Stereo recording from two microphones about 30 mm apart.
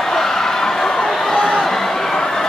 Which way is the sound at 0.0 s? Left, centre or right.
Centre.